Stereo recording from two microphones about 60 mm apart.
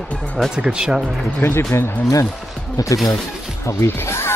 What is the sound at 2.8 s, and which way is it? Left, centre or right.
Speech, left.